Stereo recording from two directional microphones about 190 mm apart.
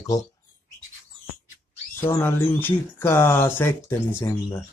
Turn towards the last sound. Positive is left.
turn(degrees=15)  # may be behind; listen again after turning